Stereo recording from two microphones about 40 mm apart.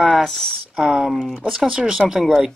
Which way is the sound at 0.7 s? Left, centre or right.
Centre.